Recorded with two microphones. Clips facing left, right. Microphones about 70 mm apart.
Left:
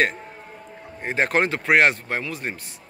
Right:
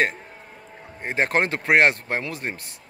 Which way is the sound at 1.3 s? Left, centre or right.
Right.